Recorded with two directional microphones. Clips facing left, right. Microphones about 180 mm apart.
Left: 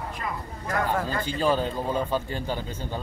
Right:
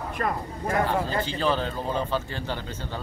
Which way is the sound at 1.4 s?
10° left (ahead or behind).